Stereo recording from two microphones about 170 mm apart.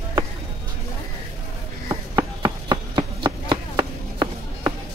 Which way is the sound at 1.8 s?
25° right (ahead or behind).